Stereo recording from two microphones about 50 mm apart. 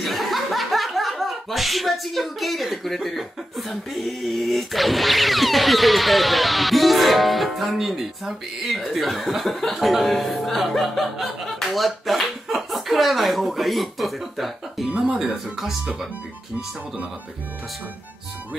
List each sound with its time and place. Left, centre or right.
0.0 s speech: centre
14.9 s speech: right